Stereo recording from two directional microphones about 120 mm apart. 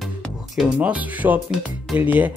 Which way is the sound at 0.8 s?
10° right (ahead or behind).